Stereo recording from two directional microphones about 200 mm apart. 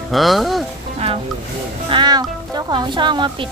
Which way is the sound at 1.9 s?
20° right (ahead or behind).